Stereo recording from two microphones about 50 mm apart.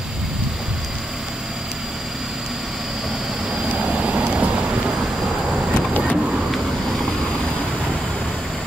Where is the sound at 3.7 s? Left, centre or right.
Right.